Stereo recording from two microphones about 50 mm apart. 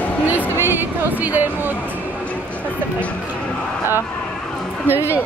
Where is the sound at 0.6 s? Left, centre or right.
Right.